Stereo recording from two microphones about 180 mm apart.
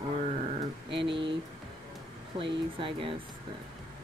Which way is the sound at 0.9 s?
80° right.